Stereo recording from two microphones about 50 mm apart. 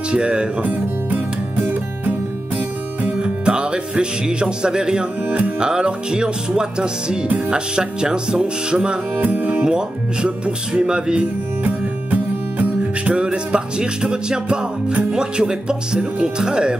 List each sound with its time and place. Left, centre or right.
0.1 s speech: centre
2.5 s music: right
7.2 s speech: right
9.2 s music: right
9.7 s music: centre
11.6 s music: right; by 16.7 s centre